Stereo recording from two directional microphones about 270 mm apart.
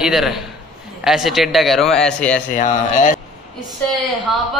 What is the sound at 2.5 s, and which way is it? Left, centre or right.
Speech, left.